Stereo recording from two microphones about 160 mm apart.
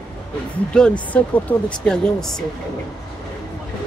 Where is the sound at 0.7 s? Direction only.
5° left (ahead or behind).